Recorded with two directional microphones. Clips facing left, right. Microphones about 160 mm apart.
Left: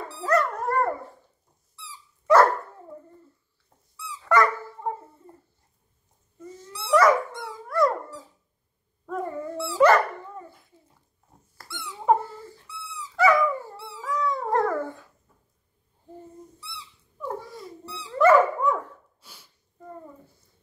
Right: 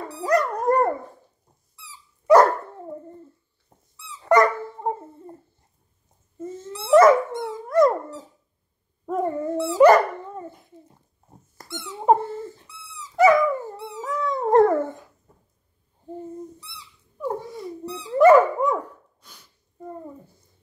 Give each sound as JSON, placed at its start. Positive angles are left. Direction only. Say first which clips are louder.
{"t": 0.1, "sound": "dog", "louder": "right 2 dB", "side_deg": -15}
{"t": 3.9, "sound": "dog", "louder": "right 4 dB", "side_deg": -25}
{"t": 15.3, "sound": "a sound", "louder": "right 6 dB", "side_deg": -40}
{"t": 16.5, "sound": "dog", "louder": "left 2 dB", "side_deg": -15}
{"t": 17.5, "sound": "dog", "louder": "right 6 dB", "side_deg": 0}
{"t": 18.1, "sound": "dog", "louder": "right 4 dB", "side_deg": -15}
{"t": 19.2, "sound": "sneeze", "louder": "even", "side_deg": 5}